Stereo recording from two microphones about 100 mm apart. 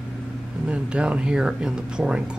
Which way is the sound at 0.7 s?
10° right (ahead or behind).